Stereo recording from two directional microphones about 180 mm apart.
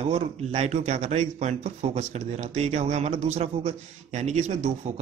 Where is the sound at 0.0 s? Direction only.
35° right (ahead or behind).